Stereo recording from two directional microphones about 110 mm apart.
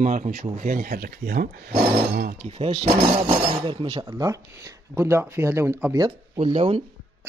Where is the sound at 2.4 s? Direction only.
60° right (ahead or behind).